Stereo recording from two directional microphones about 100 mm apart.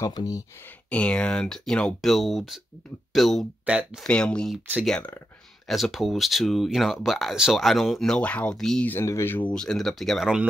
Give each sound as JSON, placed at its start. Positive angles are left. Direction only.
{"t": 0.0, "sound": "speech", "side_deg": 40}
{"t": 0.8, "sound": "speech", "side_deg": 10}
{"t": 3.6, "sound": "speech", "side_deg": -10}
{"t": 4.0, "sound": "speech", "side_deg": 10}
{"t": 9.0, "sound": "speech", "side_deg": 25}
{"t": 9.5, "sound": "speech", "side_deg": 5}